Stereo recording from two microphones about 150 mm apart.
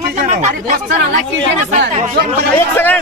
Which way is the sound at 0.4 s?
60° right (ahead or behind).